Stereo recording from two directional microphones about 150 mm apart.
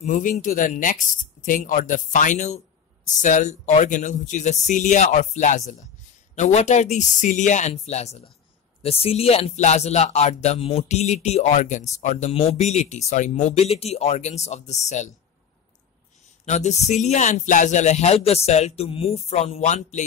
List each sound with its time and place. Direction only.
0.0 s speech: 60° left (ahead or behind)
12.3 s speech: 45° left (ahead or behind)
16.4 s speech: 50° left (ahead or behind)